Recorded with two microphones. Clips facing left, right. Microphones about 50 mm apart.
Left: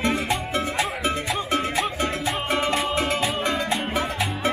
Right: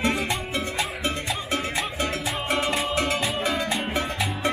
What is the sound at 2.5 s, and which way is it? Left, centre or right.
Music, centre.